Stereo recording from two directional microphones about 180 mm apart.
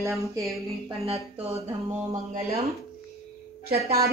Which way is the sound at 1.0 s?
35° right (ahead or behind).